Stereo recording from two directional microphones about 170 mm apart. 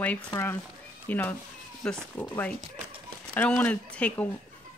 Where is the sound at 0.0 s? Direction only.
10° left (ahead or behind).